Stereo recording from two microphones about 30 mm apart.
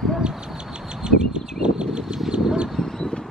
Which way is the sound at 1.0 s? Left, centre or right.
Right.